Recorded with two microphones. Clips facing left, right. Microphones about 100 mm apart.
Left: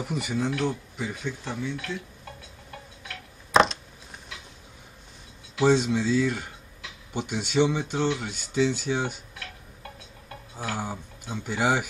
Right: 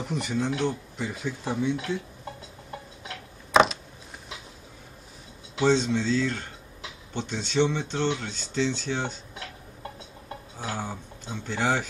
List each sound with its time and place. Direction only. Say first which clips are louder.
0.0 s speech: even; 5° left (ahead or behind)
1.4 s speech: right 5 dB; 15° right (ahead or behind)
3.5 s a sound: even; centre (ahead or behind)
5.6 s speech: left 1 dB; 10° left (ahead or behind)
10.8 s speech: left 1 dB; 10° left (ahead or behind)